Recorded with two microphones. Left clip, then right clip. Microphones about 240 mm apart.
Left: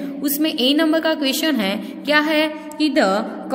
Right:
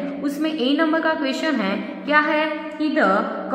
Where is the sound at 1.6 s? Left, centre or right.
Left.